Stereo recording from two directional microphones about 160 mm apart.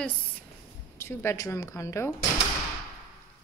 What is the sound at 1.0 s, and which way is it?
A woman's voice, 15° left (ahead or behind).